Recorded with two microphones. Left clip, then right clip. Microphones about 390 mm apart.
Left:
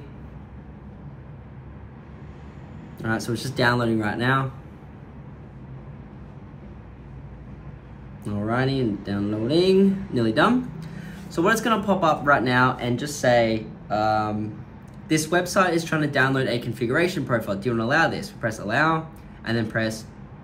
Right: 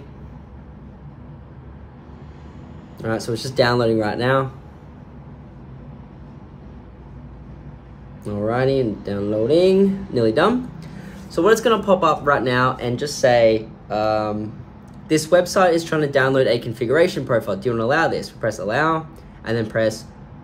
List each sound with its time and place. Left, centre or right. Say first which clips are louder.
3.0 s speech: right 3 dB; centre
8.2 s speech: right 5 dB; centre